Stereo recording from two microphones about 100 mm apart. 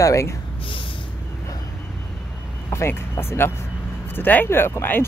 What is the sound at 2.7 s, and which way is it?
Speech, 25° left (ahead or behind).